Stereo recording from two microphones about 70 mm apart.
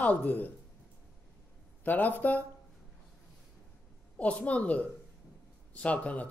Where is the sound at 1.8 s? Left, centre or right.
Left.